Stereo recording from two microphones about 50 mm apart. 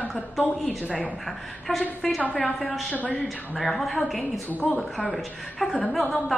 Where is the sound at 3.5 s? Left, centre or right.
Centre.